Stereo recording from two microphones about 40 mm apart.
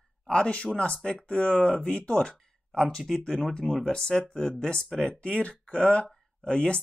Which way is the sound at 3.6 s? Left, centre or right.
Centre.